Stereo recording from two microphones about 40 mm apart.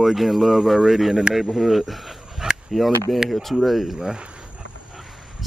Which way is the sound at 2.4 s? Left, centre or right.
Centre.